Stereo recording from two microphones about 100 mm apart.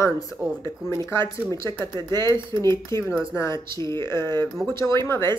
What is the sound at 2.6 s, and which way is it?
Speech, 30° left (ahead or behind).